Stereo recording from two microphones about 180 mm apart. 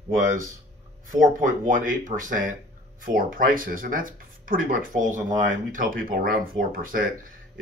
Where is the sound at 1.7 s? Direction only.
45° right (ahead or behind).